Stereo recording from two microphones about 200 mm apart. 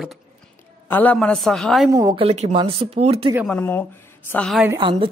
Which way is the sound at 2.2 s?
30° right (ahead or behind).